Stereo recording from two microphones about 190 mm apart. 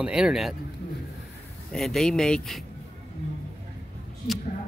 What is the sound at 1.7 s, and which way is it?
Speech, centre (ahead or behind).